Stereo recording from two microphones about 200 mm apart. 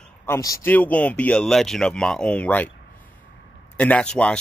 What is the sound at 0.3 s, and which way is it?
A man's voice, 15° left (ahead or behind).